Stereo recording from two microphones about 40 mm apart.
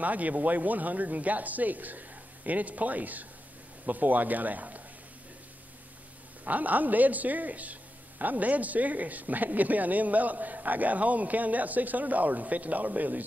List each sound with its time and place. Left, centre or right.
0.0 s a woman's voice: right
6.4 s a woman's voice: right